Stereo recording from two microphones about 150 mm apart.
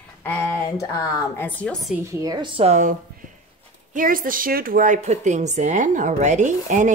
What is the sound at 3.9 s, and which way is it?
Speech, 65° right (ahead or behind).